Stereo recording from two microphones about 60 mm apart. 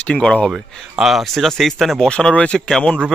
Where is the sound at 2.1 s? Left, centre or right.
Centre.